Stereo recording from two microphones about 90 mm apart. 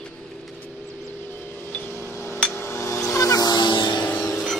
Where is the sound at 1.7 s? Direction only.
30° left (ahead or behind).